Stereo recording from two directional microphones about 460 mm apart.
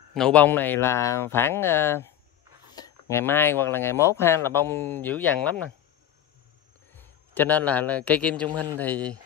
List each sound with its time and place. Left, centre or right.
0.1 s speech: centre
6.9 s a man's voice: centre